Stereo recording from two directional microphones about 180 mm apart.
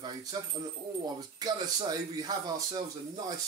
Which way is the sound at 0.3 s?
20° right (ahead or behind).